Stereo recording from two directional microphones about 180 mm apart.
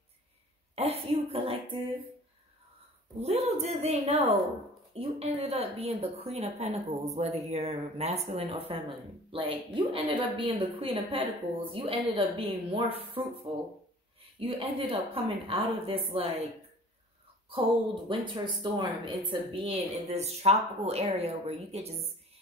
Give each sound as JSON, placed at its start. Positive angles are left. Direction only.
{"t": 0.7, "sound": "speech", "side_deg": -35}
{"t": 3.2, "sound": "speech", "side_deg": -35}
{"t": 14.4, "sound": "speech", "side_deg": -30}
{"t": 17.5, "sound": "speech", "side_deg": -30}